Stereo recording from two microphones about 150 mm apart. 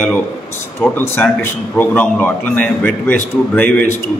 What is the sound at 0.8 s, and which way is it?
A man's voice, 15° left (ahead or behind).